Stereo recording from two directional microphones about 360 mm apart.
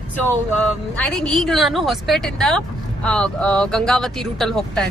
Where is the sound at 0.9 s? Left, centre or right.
Centre.